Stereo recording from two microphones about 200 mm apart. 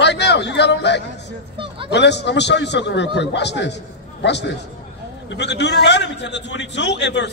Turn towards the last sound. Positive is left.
turn(degrees=60)  # may be behind; listen again after turning